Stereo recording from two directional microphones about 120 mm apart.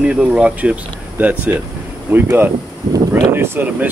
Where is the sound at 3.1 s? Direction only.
20° right (ahead or behind).